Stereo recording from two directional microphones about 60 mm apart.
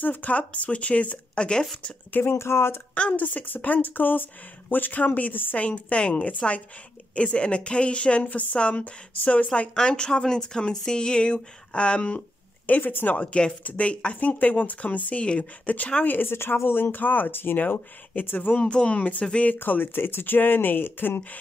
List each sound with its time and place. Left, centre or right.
0.0 s speech: left
2.3 s speech: left
2.9 s speech: left
5.7 s speech: centre
12.6 s speech: left
13.1 s speech: left
18.6 s speech: centre
19.6 s speech: left